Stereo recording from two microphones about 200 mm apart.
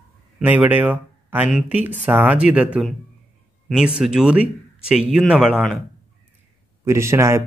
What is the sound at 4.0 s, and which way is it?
Speech, 5° right (ahead or behind).